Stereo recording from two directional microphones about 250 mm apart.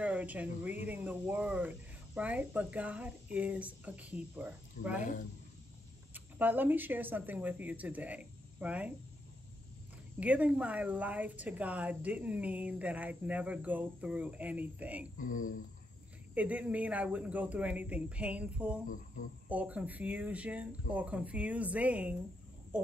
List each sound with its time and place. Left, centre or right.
0.0 s a woman's voice: centre
6.1 s speech: centre
10.2 s a woman's voice: centre
15.1 s speech: left
16.3 s a woman's voice: centre